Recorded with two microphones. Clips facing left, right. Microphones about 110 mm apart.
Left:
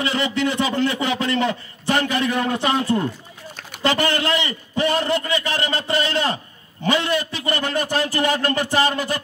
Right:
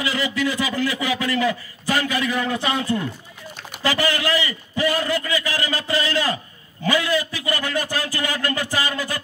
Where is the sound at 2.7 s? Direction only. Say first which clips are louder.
Left 3 dB; 55° left (ahead or behind).